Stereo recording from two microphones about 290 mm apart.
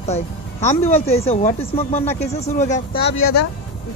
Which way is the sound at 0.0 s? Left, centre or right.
Left.